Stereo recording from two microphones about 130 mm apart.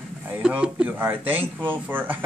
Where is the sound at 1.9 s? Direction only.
15° right (ahead or behind).